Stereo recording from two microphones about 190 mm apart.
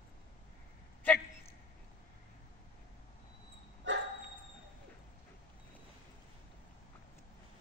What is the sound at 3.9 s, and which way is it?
Dog, 80° right.